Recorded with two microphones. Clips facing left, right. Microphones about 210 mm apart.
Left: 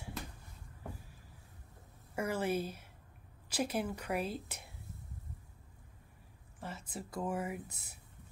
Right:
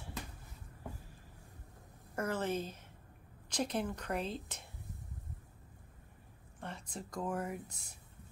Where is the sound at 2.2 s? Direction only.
10° left (ahead or behind).